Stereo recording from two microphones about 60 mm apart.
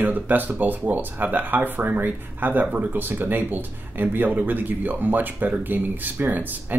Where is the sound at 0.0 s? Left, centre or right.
Right.